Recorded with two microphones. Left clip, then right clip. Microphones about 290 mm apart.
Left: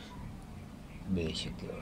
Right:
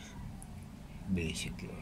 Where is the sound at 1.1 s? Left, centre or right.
Centre.